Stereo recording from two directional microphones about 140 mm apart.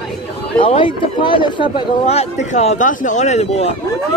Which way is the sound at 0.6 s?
40° left (ahead or behind).